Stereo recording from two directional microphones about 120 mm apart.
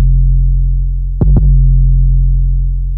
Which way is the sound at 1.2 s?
40° right (ahead or behind).